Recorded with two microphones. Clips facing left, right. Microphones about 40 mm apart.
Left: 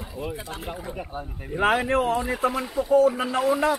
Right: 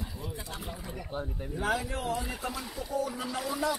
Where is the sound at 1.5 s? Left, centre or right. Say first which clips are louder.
Left 11 dB; left.